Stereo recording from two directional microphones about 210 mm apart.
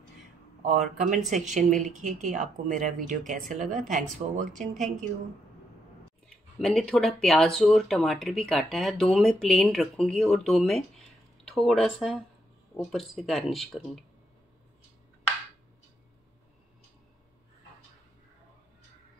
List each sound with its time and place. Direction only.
0.6 s speech: 35° right (ahead or behind)
6.2 s speech: centre (ahead or behind)